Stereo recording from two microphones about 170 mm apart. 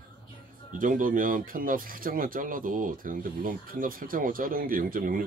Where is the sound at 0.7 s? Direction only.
50° right (ahead or behind).